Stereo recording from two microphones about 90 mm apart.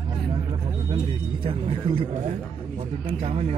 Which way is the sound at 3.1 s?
90° right.